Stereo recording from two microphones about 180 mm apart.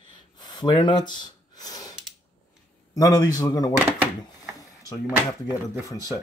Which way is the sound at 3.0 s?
20° left (ahead or behind).